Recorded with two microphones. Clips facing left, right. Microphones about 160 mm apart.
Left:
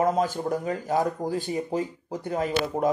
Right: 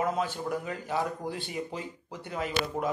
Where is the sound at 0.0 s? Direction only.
40° left (ahead or behind).